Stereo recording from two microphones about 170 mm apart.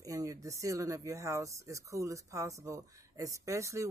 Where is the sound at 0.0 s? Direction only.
20° right (ahead or behind).